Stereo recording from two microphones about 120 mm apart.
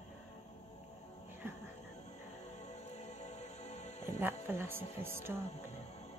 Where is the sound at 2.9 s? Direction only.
70° left (ahead or behind).